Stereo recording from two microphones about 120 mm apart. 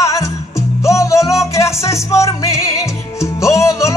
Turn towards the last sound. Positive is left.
turn(degrees=25)  # may be behind; listen again after turning